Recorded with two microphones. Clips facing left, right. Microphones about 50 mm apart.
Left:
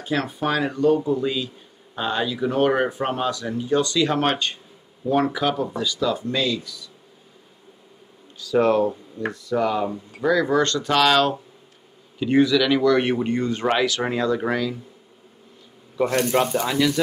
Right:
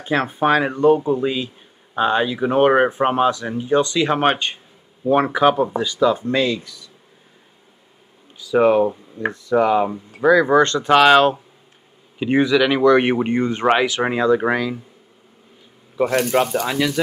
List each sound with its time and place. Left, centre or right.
0.0 s speech: right
8.4 s speech: centre
16.0 s speech: centre